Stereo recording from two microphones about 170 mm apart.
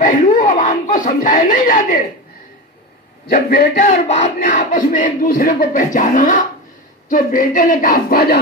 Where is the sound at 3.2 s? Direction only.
60° left (ahead or behind).